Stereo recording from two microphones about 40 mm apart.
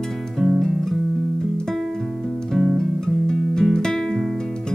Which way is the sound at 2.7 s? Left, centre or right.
Centre.